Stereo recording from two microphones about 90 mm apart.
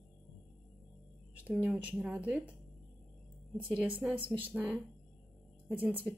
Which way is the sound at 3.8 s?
20° right (ahead or behind).